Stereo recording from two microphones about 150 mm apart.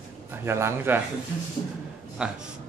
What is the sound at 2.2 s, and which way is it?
Speech, 5° right (ahead or behind).